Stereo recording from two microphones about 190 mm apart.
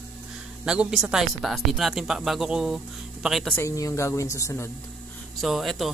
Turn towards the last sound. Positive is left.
turn(degrees=0)  # may be behind; listen again after turning